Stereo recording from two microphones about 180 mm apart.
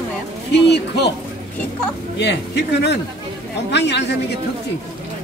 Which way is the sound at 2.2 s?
70° left (ahead or behind).